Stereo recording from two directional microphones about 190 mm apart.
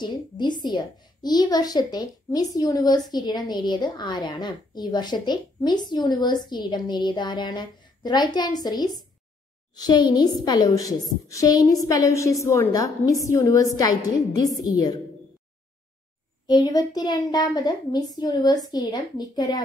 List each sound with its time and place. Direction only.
0.0 s a woman's voice: 25° left (ahead or behind)
16.4 s a woman's voice: 20° left (ahead or behind)